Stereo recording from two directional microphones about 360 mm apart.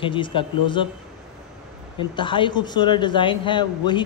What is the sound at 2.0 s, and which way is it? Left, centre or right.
A man's voice, centre.